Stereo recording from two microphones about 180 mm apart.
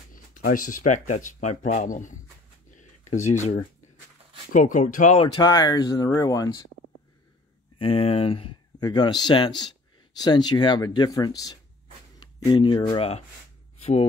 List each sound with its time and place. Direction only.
0.1 s speech: 50° left (ahead or behind)
5.2 s speech: 25° left (ahead or behind)
7.8 s speech: 30° left (ahead or behind)
13.7 s a sound: 35° left (ahead or behind)